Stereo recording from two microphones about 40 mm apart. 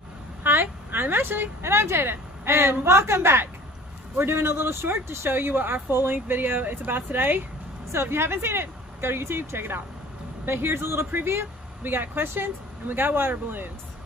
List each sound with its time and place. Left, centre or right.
0.4 s speech: right
5.5 s a woman's voice: right
5.9 s speech: right
6.2 s speech: right
7.9 s speech: right
11.8 s speech: right